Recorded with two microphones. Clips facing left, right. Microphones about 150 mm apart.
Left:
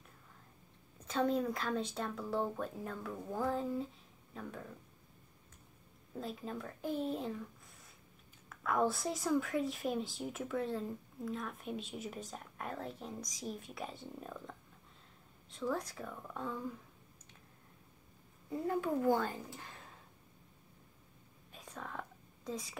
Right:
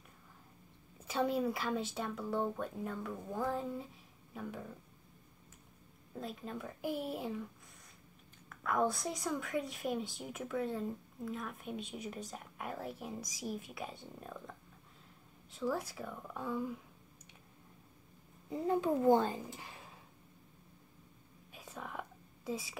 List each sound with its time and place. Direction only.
0.9 s a woman's voice: 5° right (ahead or behind)
6.1 s a woman's voice: centre (ahead or behind)
8.5 s a woman's voice: centre (ahead or behind)
18.5 s a woman's voice: 20° right (ahead or behind)
21.5 s whispering: 5° right (ahead or behind)